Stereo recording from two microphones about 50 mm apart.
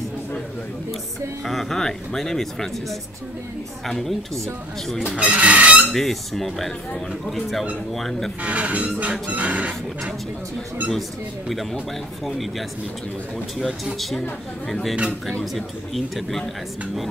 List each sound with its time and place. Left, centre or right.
1.4 s speech: centre
5.0 s speech: right
5.9 s speech: centre
8.4 s speech: right
10.9 s speech: centre
13.9 s speech: centre